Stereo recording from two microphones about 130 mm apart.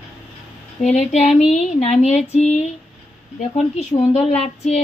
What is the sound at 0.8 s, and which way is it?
Speech, 60° left (ahead or behind).